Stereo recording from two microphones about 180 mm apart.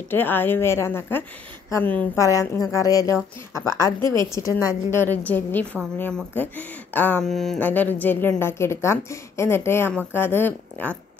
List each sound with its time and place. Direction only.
0.1 s speech: 10° left (ahead or behind)
4.0 s a woman's voice: 25° right (ahead or behind)
4.3 s speech: 20° left (ahead or behind)